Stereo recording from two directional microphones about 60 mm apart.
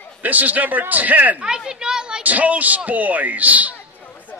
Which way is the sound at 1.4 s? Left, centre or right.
Centre.